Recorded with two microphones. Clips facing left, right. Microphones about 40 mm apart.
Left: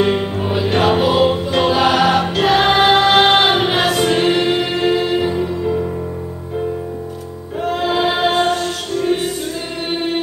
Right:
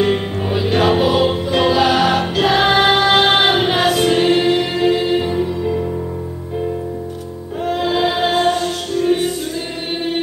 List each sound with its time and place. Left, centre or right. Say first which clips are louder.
0.4 s music: even; centre
0.8 s choir: left 1 dB; centre
1.6 s music: right 1 dB; centre
1.9 s choir: left 1 dB; centre
3.3 s music: left 1 dB; centre
4.0 s choir: right 1 dB; centre
7.6 s music: even; centre